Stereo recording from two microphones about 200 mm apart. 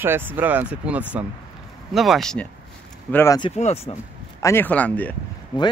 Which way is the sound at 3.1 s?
15° left (ahead or behind).